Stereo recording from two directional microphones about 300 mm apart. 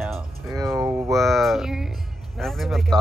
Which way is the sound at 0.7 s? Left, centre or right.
Centre.